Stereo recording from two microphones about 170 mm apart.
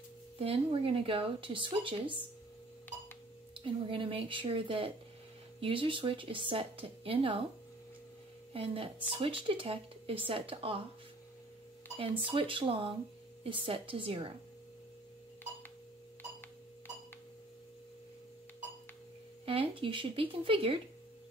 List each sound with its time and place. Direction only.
0.4 s a woman's voice: 30° right (ahead or behind)
3.5 s a woman's voice: 30° right (ahead or behind)
8.5 s a woman's voice: 30° right (ahead or behind)
12.3 s a woman's voice: 30° right (ahead or behind)
19.4 s speech: 30° right (ahead or behind)